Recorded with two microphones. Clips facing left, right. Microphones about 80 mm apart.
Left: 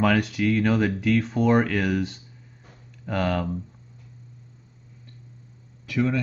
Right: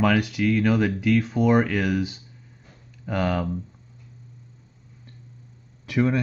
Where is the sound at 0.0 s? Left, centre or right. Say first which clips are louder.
Even; centre.